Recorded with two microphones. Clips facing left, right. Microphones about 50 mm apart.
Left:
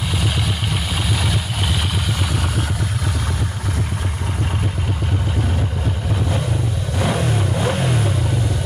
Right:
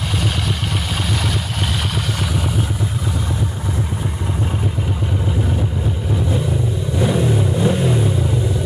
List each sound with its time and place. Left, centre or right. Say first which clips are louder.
1.0 s vehicle: even; centre
7.0 s vehicle: right 3 dB; left